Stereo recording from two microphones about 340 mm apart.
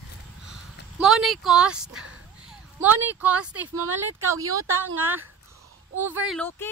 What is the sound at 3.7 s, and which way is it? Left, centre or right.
Speech, right.